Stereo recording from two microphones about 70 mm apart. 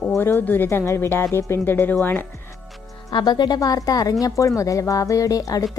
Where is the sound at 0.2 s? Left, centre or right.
Left.